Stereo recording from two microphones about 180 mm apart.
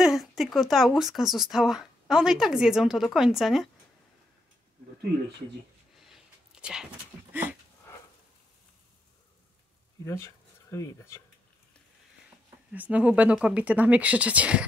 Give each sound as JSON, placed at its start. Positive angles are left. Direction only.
{"t": 0.0, "sound": "speech", "side_deg": 0}
{"t": 5.9, "sound": "a sound", "side_deg": 0}
{"t": 10.0, "sound": "speech", "side_deg": 15}
{"t": 12.7, "sound": "speech", "side_deg": -10}